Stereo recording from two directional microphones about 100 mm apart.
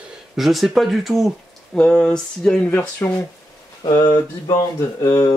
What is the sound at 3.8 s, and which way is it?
Speech, 45° left (ahead or behind).